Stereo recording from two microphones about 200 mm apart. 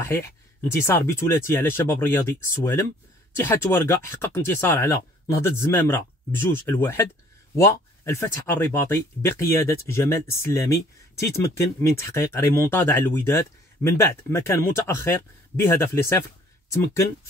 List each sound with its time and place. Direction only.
0.0 s speech: 15° left (ahead or behind)